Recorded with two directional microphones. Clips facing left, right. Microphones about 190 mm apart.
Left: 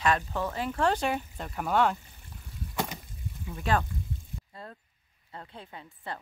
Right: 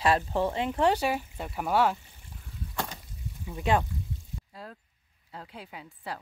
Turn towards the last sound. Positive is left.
turn(degrees=-5)  # may be behind; listen again after turning